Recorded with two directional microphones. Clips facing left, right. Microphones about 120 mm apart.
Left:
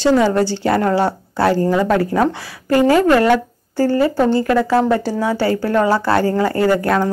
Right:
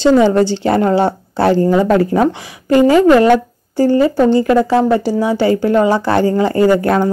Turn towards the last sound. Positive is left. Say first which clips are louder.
# right 4 dB
turn(degrees=-20)  # may be behind; listen again after turning